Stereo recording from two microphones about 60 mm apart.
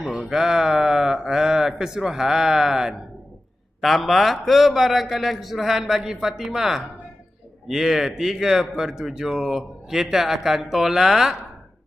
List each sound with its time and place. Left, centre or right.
0.0 s a man's voice: centre